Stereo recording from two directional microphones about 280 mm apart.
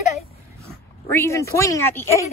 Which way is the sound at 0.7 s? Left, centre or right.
Centre.